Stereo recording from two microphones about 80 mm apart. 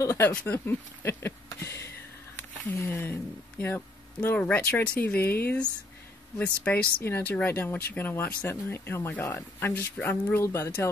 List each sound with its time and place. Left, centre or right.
0.2 s speech: left
7.0 s speech: left